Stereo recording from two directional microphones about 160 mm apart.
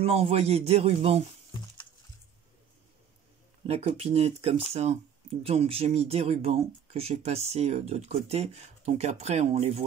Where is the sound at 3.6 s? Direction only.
40° right (ahead or behind).